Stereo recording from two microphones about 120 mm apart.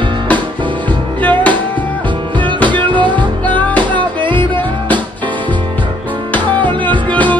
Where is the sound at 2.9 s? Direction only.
40° right (ahead or behind).